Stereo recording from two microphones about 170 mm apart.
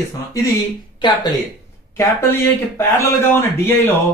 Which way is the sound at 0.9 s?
25° left (ahead or behind).